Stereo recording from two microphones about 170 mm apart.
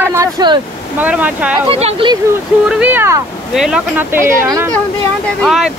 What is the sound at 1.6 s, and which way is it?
Speech, 35° right (ahead or behind).